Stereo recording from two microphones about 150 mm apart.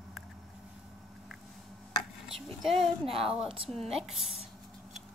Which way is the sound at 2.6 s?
Centre (ahead or behind).